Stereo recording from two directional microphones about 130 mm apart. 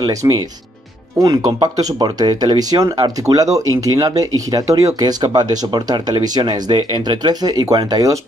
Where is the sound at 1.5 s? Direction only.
30° right (ahead or behind).